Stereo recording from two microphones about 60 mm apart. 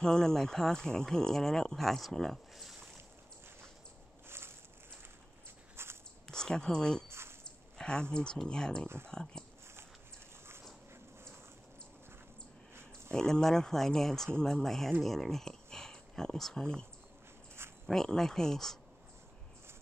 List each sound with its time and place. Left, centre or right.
0.0 s speech: centre
4.3 s walk: right
5.8 s biting: right
6.2 s speech: centre
7.1 s a sound: right
7.4 s speech: centre
13.1 s speech: centre
17.8 s speech: centre